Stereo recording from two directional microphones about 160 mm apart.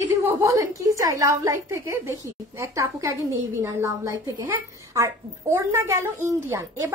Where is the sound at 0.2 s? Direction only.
20° right (ahead or behind).